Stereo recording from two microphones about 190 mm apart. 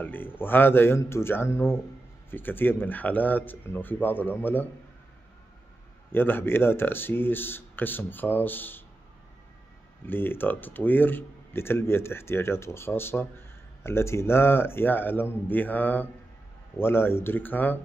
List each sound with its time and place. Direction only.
0.0 s speech: 10° left (ahead or behind)
6.1 s speech: 10° left (ahead or behind)
10.0 s speech: 10° left (ahead or behind)